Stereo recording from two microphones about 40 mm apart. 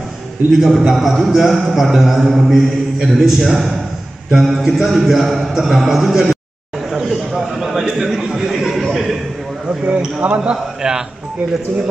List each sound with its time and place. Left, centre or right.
0.5 s a man's voice: centre
6.9 s a sound: centre
8.2 s chuckle: centre
9.7 s basketball bounce: right
10.5 s a man's voice: centre